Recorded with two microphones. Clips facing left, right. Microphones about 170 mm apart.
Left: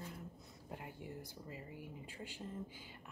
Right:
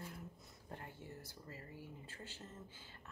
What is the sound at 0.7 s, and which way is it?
Speech, 15° left (ahead or behind).